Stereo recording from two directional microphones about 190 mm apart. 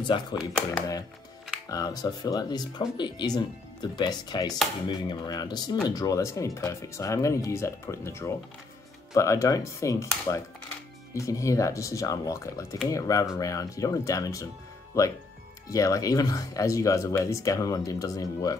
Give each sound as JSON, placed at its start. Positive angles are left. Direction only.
{"t": 0.0, "sound": "speech", "side_deg": 25}
{"t": 1.7, "sound": "speech", "side_deg": 20}